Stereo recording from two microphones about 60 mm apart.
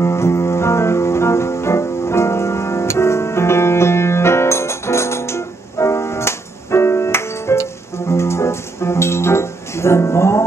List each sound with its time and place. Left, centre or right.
0.0 s music: left